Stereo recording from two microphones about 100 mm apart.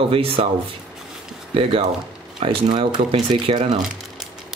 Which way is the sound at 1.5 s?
70° right (ahead or behind).